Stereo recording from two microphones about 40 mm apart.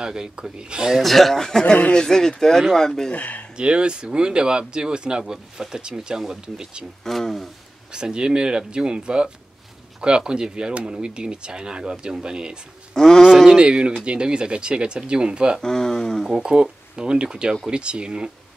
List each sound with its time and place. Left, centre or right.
0.0 s speech: centre
0.9 s speech: centre
3.1 s speech: left
3.5 s speech: right
7.1 s speech: centre
7.9 s speech: right
12.9 s speech: centre
13.6 s speech: right
15.6 s speech: centre
16.3 s speech: centre